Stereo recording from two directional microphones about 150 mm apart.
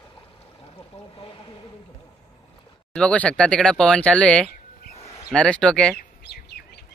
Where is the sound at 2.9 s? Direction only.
10° left (ahead or behind).